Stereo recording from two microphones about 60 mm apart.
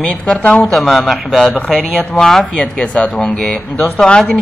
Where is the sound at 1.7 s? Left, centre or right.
Right.